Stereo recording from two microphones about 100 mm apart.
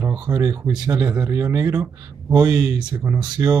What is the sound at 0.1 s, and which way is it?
Speech, 35° right (ahead or behind).